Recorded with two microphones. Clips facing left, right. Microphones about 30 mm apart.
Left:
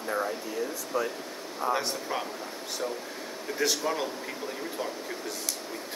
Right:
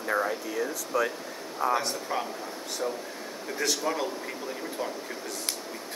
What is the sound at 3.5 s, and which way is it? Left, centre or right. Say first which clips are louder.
Speech: even; centre.